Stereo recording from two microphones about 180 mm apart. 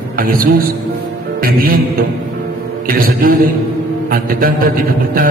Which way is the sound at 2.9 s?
55° right (ahead or behind).